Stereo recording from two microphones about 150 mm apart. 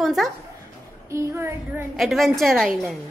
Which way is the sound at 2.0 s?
Centre (ahead or behind).